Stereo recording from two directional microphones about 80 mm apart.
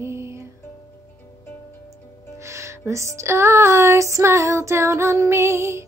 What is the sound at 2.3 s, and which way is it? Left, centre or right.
Music, right.